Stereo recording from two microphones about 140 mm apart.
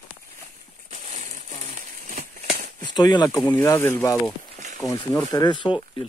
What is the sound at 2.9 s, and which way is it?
Speech, 30° left (ahead or behind).